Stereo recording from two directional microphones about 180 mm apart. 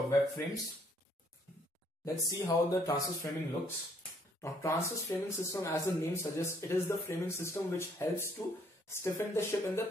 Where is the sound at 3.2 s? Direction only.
10° left (ahead or behind).